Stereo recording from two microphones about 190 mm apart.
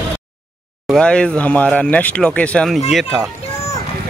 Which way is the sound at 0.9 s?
5° left (ahead or behind).